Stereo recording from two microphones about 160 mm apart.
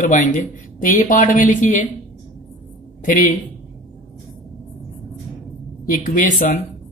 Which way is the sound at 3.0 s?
55° left (ahead or behind).